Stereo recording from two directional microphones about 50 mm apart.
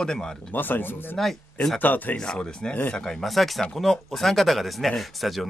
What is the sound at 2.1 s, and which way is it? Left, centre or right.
Speech, centre.